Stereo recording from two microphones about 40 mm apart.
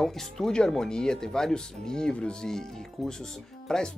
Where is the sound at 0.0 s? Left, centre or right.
Centre.